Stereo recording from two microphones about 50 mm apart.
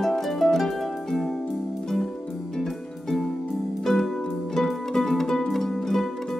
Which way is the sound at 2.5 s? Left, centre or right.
Centre.